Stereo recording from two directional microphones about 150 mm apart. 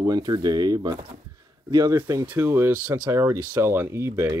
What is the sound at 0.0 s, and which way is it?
Speech, 25° right (ahead or behind).